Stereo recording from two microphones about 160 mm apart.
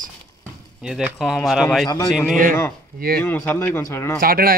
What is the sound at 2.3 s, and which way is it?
Speech, 55° right (ahead or behind).